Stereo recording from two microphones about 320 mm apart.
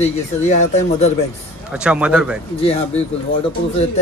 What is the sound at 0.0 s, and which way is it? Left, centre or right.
Speech, left.